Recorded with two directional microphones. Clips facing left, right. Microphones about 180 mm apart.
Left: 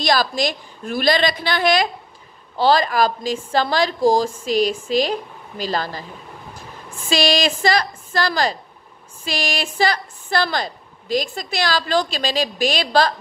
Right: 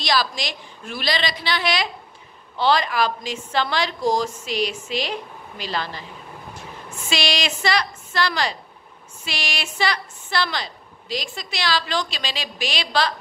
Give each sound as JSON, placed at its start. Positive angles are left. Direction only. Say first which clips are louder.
{"t": 0.0, "sound": "a woman's voice", "louder": "left 5 dB", "side_deg": 45}
{"t": 7.1, "sound": "a woman's voice", "louder": "left 6 dB", "side_deg": 40}